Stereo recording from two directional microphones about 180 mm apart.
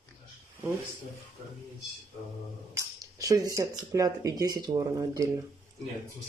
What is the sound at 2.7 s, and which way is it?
Speech, 20° right (ahead or behind).